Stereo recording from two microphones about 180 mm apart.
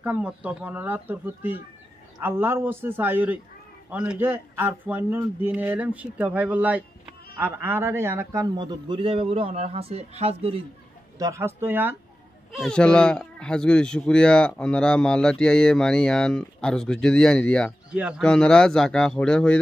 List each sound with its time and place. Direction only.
0.0 s a man's voice: 10° right (ahead or behind); by 10.6 s 35° right (ahead or behind)
11.1 s a man's voice: 15° right (ahead or behind)
12.5 s speech: 5° left (ahead or behind)
17.9 s speech: 5° right (ahead or behind)